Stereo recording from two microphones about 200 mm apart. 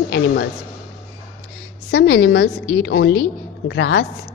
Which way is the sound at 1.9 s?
70° left (ahead or behind).